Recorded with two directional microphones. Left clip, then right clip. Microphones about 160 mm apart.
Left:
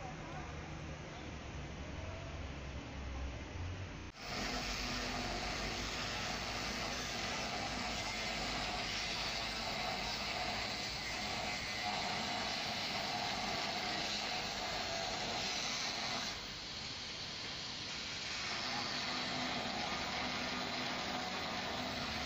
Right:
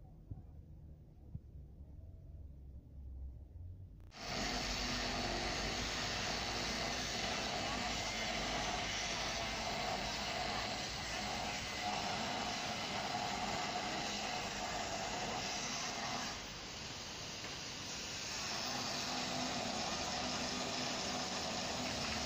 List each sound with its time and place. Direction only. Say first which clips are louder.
4.3 s vehicle: right 1 dB; 35° right (ahead or behind); by 16.3 s 60° right (ahead or behind)
17.6 s vehicle: left 2 dB; 65° right (ahead or behind)